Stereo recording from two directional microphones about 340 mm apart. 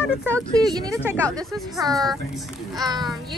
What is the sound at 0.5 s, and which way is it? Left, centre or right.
A child's voice, centre.